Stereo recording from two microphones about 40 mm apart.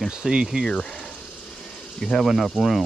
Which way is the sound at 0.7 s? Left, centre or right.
Left.